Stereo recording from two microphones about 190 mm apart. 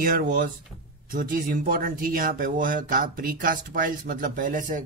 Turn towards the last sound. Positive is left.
turn(degrees=-45)  # may be behind; listen again after turning